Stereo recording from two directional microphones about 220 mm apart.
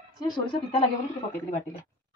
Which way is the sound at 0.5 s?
25° left (ahead or behind).